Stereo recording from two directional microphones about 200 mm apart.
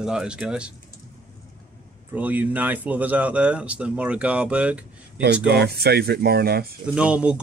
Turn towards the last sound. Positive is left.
turn(degrees=-5)  # may be behind; listen again after turning